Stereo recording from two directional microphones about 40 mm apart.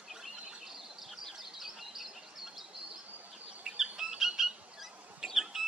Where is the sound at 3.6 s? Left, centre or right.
Centre.